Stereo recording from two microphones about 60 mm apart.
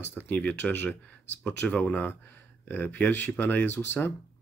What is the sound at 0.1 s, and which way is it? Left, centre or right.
Speech, left.